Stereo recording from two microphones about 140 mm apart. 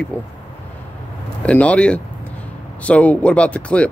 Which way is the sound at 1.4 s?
10° left (ahead or behind).